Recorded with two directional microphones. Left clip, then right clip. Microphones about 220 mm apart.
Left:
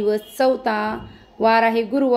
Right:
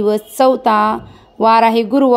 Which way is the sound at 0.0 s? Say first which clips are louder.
Right 6 dB; 30° right (ahead or behind).